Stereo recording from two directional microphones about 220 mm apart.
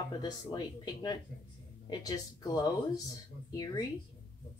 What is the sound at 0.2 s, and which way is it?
Speech, 20° left (ahead or behind).